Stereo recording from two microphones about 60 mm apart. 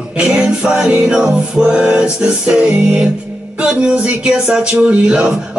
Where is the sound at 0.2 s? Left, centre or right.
Centre.